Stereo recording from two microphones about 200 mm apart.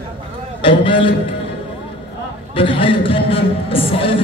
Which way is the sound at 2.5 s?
25° left (ahead or behind).